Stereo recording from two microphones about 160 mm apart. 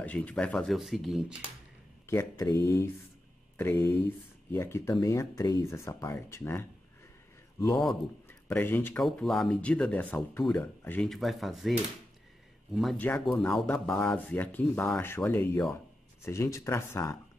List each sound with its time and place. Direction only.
0.0 s speech: 10° left (ahead or behind)
2.0 s speech: 20° left (ahead or behind)
7.7 s speech: centre (ahead or behind)
8.3 s speech: 10° left (ahead or behind)
12.7 s speech: centre (ahead or behind); by 17.2 s 20° left (ahead or behind)